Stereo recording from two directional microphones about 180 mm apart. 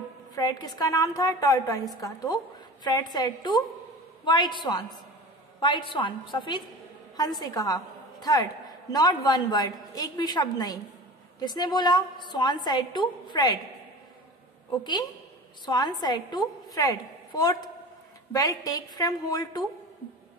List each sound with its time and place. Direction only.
0.4 s a woman's voice: 20° left (ahead or behind)
14.8 s a woman's voice: 25° left (ahead or behind)